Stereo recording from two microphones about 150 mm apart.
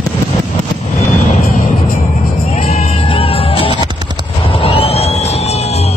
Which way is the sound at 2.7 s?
40° left (ahead or behind).